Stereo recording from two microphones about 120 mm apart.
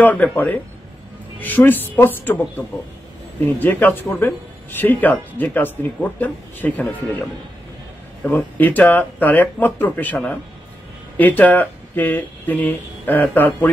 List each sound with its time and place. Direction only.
0.0 s speech: 15° left (ahead or behind)
11.1 s speech: 15° left (ahead or behind)